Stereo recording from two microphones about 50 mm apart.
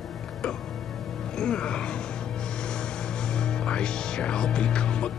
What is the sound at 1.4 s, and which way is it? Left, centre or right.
Speech, centre.